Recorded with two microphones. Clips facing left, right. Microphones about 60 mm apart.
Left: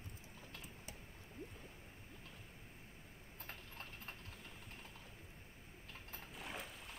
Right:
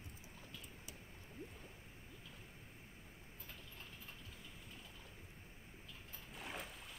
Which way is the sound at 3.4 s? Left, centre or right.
Left.